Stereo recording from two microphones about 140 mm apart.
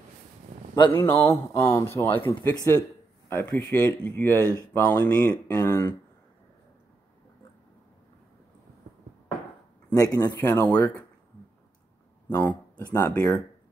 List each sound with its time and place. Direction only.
0.9 s speech: 15° left (ahead or behind)
5.7 s speech: 25° left (ahead or behind)
9.9 s speech: 25° left (ahead or behind)
10.3 s speech: 15° left (ahead or behind)
12.3 s speech: 10° left (ahead or behind)